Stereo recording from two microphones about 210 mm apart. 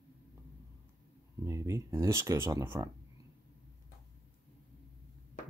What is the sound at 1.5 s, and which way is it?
Speech, 15° right (ahead or behind).